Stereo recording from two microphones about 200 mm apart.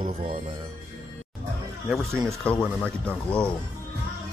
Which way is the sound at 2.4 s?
5° left (ahead or behind).